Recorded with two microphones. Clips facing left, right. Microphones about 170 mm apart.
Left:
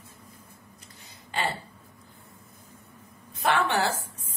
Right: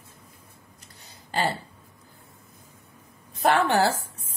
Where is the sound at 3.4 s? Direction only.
35° right (ahead or behind).